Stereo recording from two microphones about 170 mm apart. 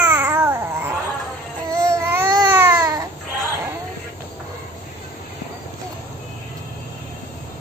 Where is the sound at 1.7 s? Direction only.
15° right (ahead or behind).